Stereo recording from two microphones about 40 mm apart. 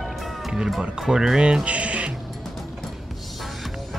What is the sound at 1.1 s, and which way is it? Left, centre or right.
Speech, centre.